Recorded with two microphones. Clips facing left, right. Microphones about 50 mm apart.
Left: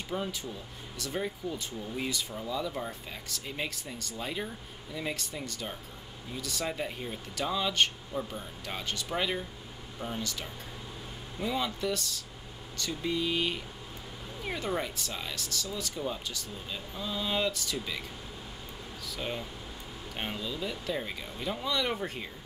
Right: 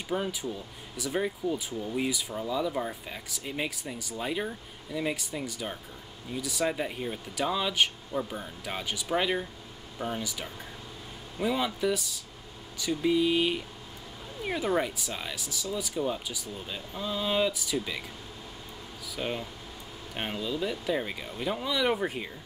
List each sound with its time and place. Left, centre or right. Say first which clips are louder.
0.1 s speech: right 4 dB; centre
8.2 s speech: right 3 dB; centre
8.6 s speech: right 3 dB; centre
19.0 s speech: right 3 dB; centre